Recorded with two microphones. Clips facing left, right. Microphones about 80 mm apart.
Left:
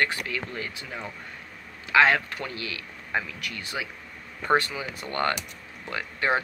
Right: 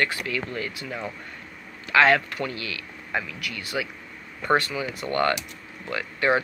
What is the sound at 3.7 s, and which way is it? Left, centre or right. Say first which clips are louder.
Speech: right 4 dB; centre.